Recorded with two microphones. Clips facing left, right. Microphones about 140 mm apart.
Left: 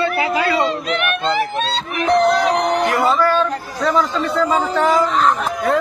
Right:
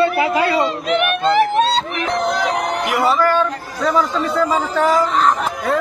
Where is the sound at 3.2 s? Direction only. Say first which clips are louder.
Even; 15° right (ahead or behind).